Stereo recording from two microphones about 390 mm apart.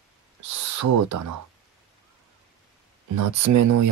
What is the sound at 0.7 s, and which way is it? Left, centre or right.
Speech, right.